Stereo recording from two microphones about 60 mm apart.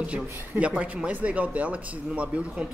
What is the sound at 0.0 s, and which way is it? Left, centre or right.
Speech, right.